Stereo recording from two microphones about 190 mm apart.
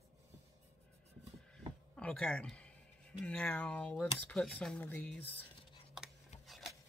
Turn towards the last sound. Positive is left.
turn(degrees=0)  # may be behind; listen again after turning